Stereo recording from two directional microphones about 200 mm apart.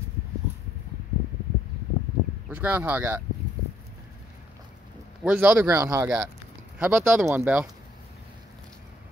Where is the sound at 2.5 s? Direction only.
10° right (ahead or behind).